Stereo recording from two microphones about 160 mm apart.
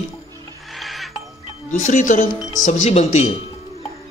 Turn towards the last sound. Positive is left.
turn(degrees=45)  # may be behind; listen again after turning